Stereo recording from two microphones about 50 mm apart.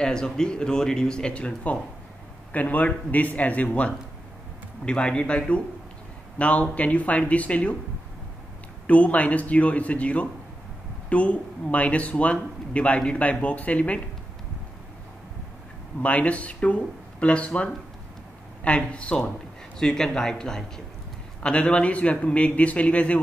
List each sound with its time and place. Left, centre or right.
0.0 s a man's voice: centre
8.8 s a man's voice: left
16.0 s a man's voice: left; by 20.8 s centre
21.4 s a man's voice: left